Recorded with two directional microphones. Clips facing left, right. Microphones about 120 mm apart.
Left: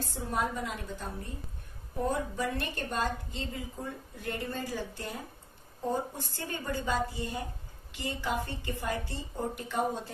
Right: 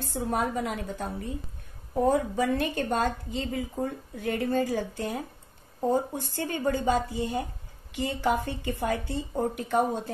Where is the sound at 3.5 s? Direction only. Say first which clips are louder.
Right 10 dB; 65° right (ahead or behind).